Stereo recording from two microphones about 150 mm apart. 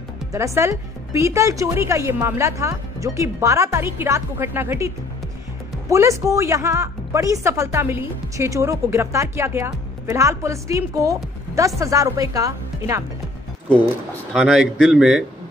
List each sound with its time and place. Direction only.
0.3 s a woman's voice: 20° right (ahead or behind)
14.3 s a man's voice: 5° right (ahead or behind)